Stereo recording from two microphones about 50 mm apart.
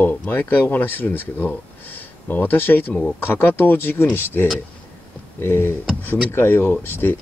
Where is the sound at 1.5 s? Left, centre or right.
Left.